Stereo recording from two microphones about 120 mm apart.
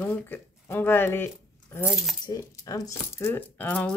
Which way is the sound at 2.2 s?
30° left (ahead or behind).